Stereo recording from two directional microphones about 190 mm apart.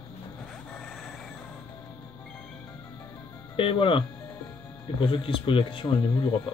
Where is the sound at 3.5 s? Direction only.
25° left (ahead or behind).